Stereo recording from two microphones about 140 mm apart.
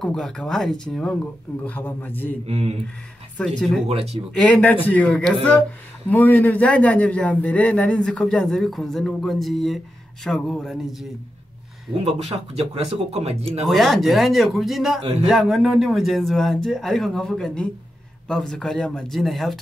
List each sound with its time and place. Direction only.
0.0 s a man's voice: 5° left (ahead or behind)
2.4 s speech: 50° right (ahead or behind)
3.4 s speech: centre (ahead or behind)
3.8 s speech: 50° right (ahead or behind)
4.4 s a man's voice: 10° left (ahead or behind)
12.5 s speech: 45° right (ahead or behind)
13.7 s speech: centre (ahead or behind)